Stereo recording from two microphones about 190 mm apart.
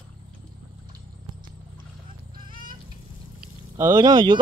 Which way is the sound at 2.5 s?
45° right (ahead or behind).